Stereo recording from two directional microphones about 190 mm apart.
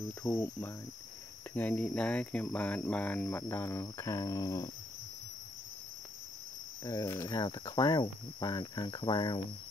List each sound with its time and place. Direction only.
0.2 s speech: 15° left (ahead or behind)
6.8 s speech: 20° left (ahead or behind)